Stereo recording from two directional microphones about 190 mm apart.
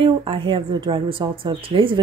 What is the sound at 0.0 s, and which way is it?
Speech, 25° right (ahead or behind).